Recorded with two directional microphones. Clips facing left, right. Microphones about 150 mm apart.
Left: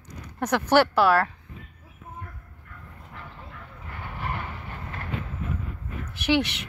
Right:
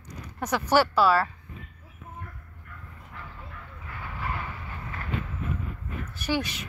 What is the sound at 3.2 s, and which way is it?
Vehicle, 20° left (ahead or behind).